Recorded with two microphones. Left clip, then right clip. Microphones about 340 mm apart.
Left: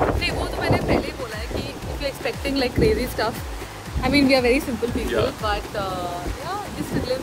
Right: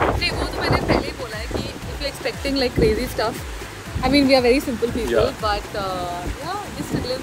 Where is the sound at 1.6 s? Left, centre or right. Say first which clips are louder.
Even; centre.